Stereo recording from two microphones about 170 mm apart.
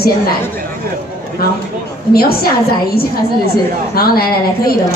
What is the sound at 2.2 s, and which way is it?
A woman's voice, 65° left (ahead or behind).